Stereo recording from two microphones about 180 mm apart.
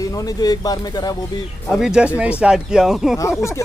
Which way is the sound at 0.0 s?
20° left (ahead or behind).